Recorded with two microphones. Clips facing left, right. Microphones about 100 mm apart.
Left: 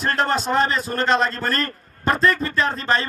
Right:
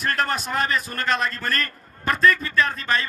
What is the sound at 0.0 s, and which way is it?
A man's voice, 30° left (ahead or behind).